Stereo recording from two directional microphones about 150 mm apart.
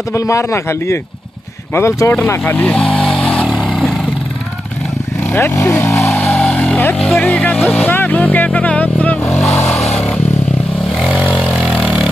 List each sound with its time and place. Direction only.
0.1 s speech: 20° left (ahead or behind)
5.3 s vehicle: 15° left (ahead or behind)
11.0 s vehicle: 5° right (ahead or behind)